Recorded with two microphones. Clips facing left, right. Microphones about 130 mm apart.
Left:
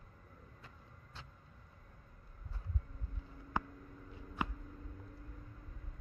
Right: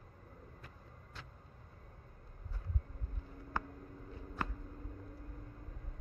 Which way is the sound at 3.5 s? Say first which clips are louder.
Left 2 dB; 20° left (ahead or behind).